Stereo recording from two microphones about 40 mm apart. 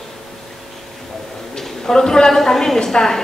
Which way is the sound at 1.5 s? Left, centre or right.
Centre.